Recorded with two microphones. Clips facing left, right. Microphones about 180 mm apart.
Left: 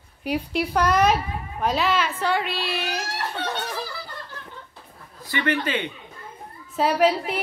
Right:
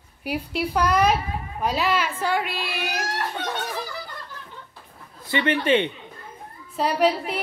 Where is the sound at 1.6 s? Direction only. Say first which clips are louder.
Left 1 dB; 10° right (ahead or behind).